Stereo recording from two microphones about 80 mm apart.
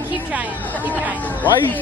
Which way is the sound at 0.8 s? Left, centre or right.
Right.